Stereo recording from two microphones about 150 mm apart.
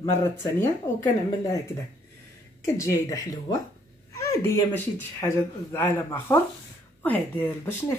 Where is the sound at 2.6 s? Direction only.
20° left (ahead or behind).